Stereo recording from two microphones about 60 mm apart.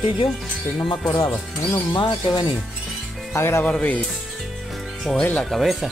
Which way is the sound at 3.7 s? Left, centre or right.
Left.